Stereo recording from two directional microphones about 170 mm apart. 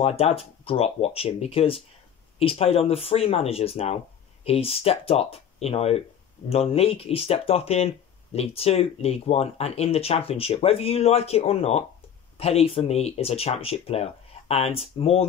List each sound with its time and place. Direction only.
0.0 s speech: 35° left (ahead or behind)